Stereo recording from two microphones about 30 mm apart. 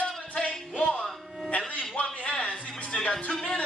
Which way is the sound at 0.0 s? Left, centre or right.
Left.